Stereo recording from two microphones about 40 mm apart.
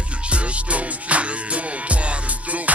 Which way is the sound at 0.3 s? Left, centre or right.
Right.